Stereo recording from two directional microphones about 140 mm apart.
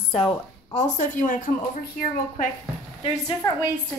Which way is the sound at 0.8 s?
65° left (ahead or behind).